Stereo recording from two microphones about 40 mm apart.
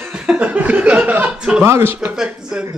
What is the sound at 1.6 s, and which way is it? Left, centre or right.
Speech, right.